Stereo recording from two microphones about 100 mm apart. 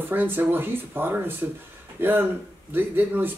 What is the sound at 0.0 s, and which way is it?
Speech, 20° right (ahead or behind).